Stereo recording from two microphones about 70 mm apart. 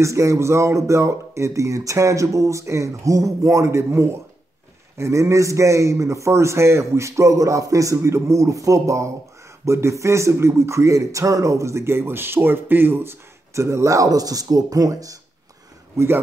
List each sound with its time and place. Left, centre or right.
0.0 s speech: right